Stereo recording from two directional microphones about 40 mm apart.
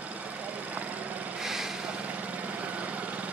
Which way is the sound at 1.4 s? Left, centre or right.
Centre.